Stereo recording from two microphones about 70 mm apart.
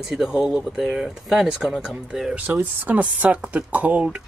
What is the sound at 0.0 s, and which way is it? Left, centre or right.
Speech, centre.